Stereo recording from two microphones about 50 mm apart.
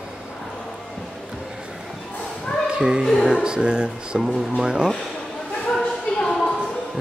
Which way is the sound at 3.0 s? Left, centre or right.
Centre.